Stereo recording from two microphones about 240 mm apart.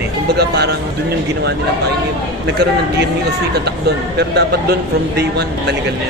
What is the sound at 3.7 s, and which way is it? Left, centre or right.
Speech, right.